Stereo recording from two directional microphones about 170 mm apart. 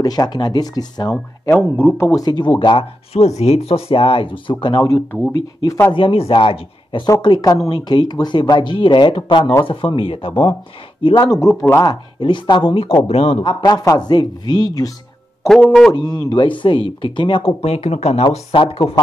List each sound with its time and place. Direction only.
0.0 s speech: 20° left (ahead or behind)
5.9 s speech: 35° left (ahead or behind)
11.4 s speech: 15° left (ahead or behind)
15.4 s a man's voice: centre (ahead or behind)
15.9 s speech: 25° left (ahead or behind)